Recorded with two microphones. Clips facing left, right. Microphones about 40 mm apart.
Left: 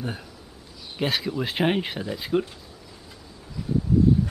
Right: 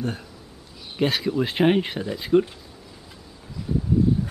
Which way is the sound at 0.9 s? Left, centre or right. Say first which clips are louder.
Right 4 dB; centre.